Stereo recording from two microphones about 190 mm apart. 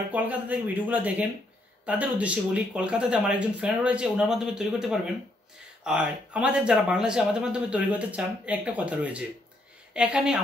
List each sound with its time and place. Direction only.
0.1 s speech: 10° right (ahead or behind)